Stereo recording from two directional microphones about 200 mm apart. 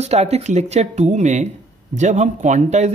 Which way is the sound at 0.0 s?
30° right (ahead or behind).